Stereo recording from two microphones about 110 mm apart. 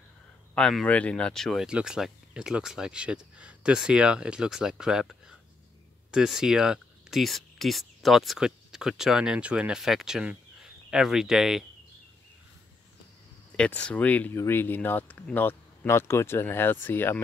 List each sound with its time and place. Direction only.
0.6 s speech: 5° left (ahead or behind)
6.1 s speech: 5° right (ahead or behind)
13.6 s speech: 10° left (ahead or behind)